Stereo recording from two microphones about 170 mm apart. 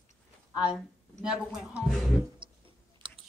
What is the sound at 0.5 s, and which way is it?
A woman's voice, 5° right (ahead or behind).